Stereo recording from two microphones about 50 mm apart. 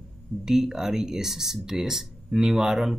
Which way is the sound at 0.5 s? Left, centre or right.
Centre.